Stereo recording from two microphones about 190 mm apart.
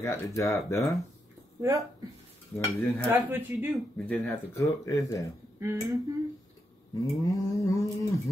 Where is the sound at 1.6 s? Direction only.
20° right (ahead or behind).